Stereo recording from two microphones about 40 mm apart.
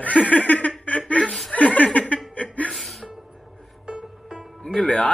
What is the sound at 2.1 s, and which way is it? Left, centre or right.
Chuckle, left.